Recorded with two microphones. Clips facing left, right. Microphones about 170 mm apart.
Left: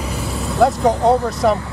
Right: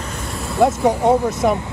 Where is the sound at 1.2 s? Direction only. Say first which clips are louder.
Left 1 dB; 20° right (ahead or behind).